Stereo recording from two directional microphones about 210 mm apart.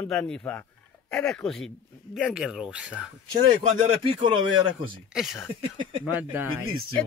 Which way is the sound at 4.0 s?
25° right (ahead or behind).